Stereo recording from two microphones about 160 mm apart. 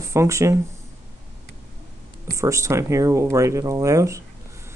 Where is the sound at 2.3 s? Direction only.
20° right (ahead or behind).